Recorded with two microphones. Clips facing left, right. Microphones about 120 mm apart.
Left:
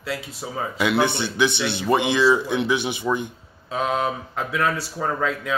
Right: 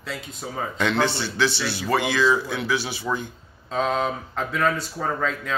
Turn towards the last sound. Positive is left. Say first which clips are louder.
# left 2 dB
turn(degrees=5)  # may be behind; listen again after turning